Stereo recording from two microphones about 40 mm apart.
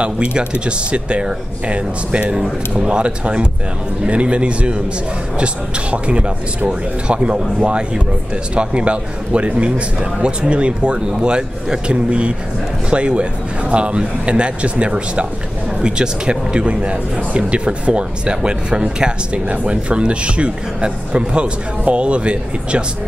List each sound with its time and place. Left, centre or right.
0.0 s a man's voice: right